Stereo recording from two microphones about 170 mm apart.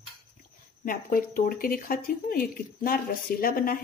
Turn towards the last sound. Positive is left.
turn(degrees=60)  # may be behind; listen again after turning